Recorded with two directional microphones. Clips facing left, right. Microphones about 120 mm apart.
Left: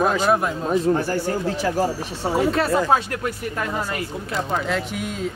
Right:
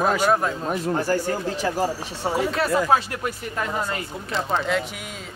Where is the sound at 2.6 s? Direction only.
30° left (ahead or behind).